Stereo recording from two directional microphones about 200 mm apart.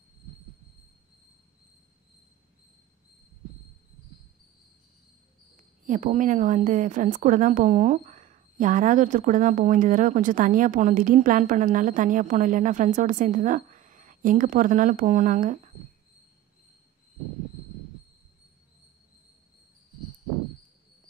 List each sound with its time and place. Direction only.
5.9 s a woman's voice: 40° right (ahead or behind)